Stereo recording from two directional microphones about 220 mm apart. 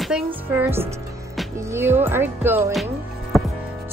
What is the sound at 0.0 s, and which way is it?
Speech, 5° right (ahead or behind).